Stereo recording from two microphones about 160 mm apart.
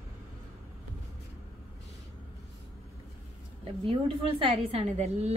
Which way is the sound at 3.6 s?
35° right (ahead or behind).